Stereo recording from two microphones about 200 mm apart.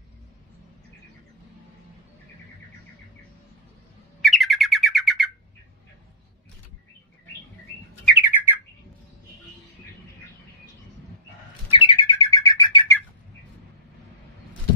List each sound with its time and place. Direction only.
4.2 s bird: centre (ahead or behind)
8.2 s bird: 10° right (ahead or behind)
11.7 s bird: 25° left (ahead or behind)